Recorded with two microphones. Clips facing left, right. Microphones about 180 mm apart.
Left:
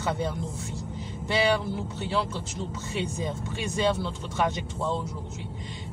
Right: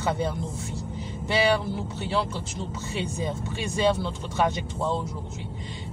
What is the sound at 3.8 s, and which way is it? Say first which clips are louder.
Speech: right 3 dB; 15° right (ahead or behind).